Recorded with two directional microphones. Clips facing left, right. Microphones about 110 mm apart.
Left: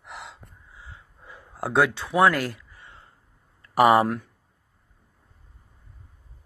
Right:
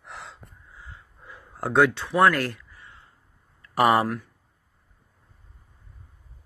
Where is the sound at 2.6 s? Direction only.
25° left (ahead or behind).